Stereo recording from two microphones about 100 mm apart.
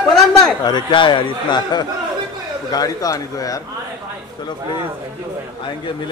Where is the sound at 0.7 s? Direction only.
50° left (ahead or behind).